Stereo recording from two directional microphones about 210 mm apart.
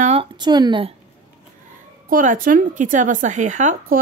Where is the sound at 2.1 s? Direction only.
40° right (ahead or behind).